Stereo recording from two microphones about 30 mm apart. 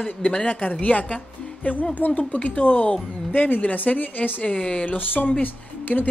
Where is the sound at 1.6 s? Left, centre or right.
Left.